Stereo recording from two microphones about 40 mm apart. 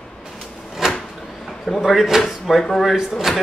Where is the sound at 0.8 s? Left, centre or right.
Centre.